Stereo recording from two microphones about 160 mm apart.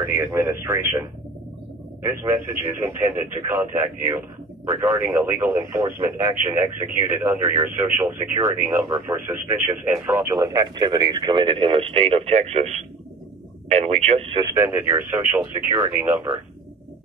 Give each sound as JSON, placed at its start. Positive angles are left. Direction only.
{"t": 0.0, "sound": "speech", "side_deg": -15}
{"t": 2.0, "sound": "speech", "side_deg": -15}
{"t": 14.4, "sound": "speech", "side_deg": -20}